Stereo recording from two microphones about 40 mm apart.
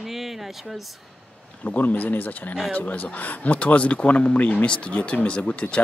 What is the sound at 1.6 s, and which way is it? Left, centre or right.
Speech, left.